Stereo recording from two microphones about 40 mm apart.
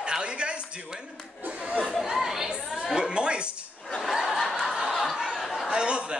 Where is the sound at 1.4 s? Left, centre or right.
Right.